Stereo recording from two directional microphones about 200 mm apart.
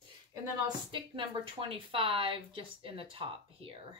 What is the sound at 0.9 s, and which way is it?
A woman's voice, 25° right (ahead or behind).